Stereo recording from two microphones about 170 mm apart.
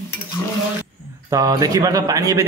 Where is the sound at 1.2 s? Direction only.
20° right (ahead or behind).